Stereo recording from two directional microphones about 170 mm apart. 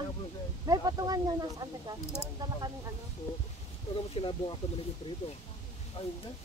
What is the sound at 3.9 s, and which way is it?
Speech, 30° left (ahead or behind).